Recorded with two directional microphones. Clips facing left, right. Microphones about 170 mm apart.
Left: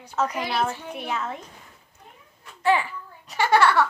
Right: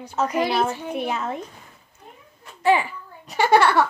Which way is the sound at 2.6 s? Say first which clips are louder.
Right 3 dB; 15° right (ahead or behind).